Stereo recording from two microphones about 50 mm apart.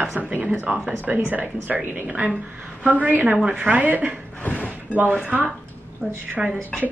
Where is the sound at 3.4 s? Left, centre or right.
Right.